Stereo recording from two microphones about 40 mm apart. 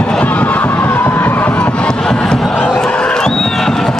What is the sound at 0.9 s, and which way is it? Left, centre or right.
Music, left.